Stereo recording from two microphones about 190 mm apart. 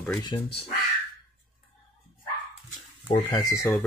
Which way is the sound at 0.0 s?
15° left (ahead or behind).